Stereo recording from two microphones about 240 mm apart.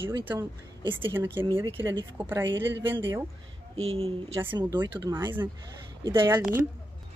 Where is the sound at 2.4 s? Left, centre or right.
Right.